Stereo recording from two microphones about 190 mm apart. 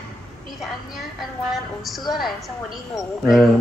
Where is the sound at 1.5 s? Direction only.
Centre (ahead or behind).